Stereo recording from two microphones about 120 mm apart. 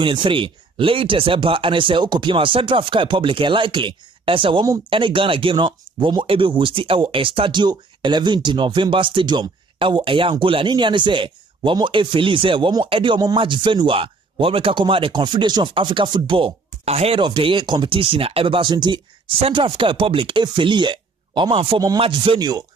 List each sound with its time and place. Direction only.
0.0 s speech: 45° right (ahead or behind)
17.2 s speech: 45° right (ahead or behind)